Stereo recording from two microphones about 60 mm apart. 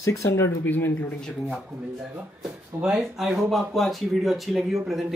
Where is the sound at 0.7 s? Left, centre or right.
Left.